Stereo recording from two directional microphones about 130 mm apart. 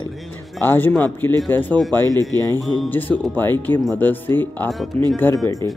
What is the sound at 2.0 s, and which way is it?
Speech, 30° right (ahead or behind).